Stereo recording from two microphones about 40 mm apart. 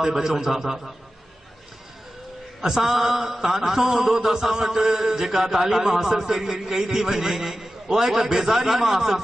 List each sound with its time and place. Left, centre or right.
0.0 s a man's voice: centre
2.6 s a man's voice: centre